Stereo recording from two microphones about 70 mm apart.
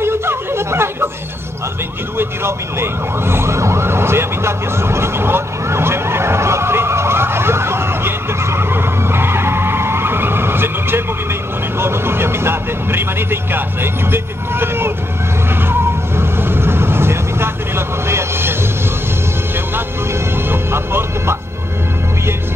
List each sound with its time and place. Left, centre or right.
0.0 s chatter: right
2.1 s emergency vehicle: right
11.8 s vehicle: right
14.1 s speech: right
15.7 s vehicle: right
20.4 s music: right